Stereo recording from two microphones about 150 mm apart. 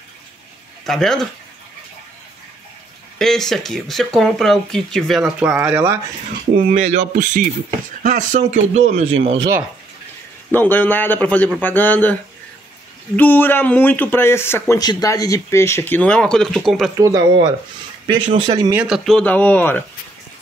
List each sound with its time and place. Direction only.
0.8 s speech: centre (ahead or behind)
3.2 s speech: 5° left (ahead or behind)
6.5 s speech: 55° right (ahead or behind); by 9.5 s 40° right (ahead or behind)
10.5 s speech: 10° left (ahead or behind)
16.9 s speech: 25° right (ahead or behind)
18.0 s speech: 35° right (ahead or behind)
18.8 s speech: centre (ahead or behind)